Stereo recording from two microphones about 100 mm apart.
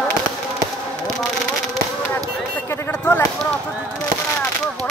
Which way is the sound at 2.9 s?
20° left (ahead or behind).